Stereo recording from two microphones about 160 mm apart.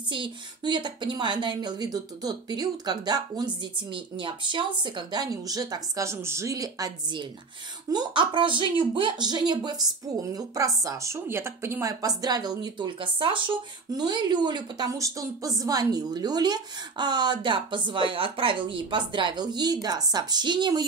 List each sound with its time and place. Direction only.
0.1 s a woman's voice: 30° right (ahead or behind)